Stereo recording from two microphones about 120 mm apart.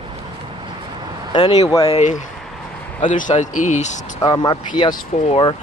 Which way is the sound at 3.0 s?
90° left.